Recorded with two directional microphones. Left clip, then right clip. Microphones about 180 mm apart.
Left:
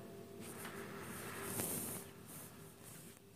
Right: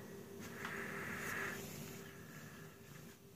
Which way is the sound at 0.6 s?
5° right (ahead or behind).